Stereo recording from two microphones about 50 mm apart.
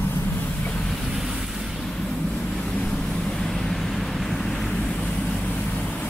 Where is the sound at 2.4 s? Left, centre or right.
Centre.